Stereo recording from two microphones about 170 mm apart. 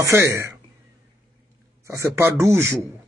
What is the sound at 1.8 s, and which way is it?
Speech, 15° right (ahead or behind).